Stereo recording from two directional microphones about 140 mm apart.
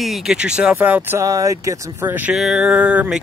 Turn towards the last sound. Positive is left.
turn(degrees=-10)  # may be behind; listen again after turning